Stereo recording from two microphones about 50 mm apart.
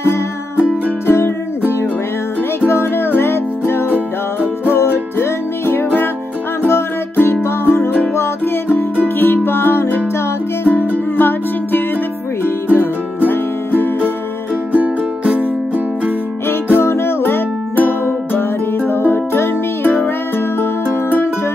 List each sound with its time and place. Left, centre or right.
0.6 s music: right
1.0 s music: left
2.7 s music: left
3.9 s music: right
4.7 s music: left
7.2 s music: left
9.2 s music: left
13.3 s music: left
16.7 s music: left